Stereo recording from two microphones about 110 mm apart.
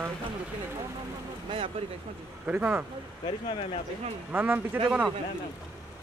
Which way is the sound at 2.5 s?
15° right (ahead or behind).